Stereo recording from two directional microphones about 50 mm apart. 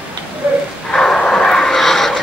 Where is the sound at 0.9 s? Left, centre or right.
Centre.